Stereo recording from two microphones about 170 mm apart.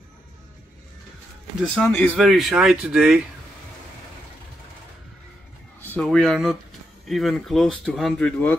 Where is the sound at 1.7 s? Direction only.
5° left (ahead or behind).